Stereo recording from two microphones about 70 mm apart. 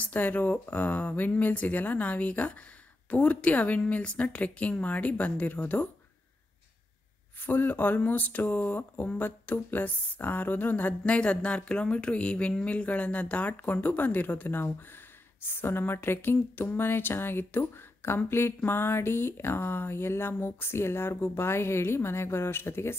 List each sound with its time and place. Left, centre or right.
0.0 s speech: left
7.4 s speech: left